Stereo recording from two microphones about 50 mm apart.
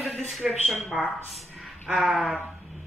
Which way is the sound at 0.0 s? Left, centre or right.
Centre.